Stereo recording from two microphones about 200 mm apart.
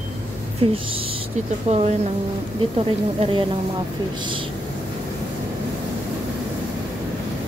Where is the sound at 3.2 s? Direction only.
25° right (ahead or behind).